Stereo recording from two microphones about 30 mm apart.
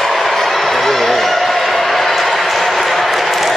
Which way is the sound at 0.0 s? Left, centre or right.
Centre.